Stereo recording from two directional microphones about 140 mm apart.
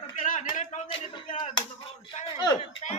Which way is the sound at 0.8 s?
40° left (ahead or behind).